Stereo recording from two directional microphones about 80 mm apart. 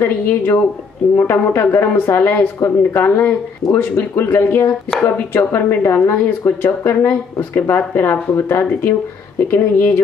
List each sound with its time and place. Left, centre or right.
0.0 s speech: left
3.6 s speech: centre
4.1 s speech: left